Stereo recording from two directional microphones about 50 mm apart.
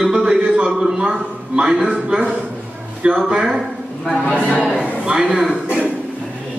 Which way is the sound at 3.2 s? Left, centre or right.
Centre.